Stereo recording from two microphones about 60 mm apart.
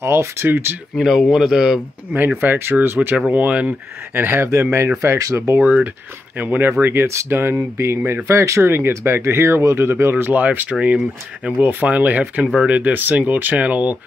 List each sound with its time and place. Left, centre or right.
0.0 s speech: right
0.9 s speech: centre
2.1 s speech: right
3.3 s speech: right
4.1 s speech: right
4.5 s speech: right
5.6 s speech: right
6.8 s speech: right
10.3 s speech: right